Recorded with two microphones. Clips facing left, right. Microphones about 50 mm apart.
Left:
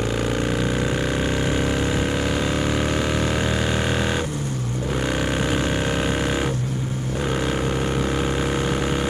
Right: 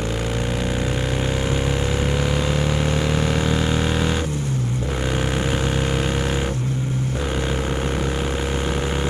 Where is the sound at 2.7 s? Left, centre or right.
Centre.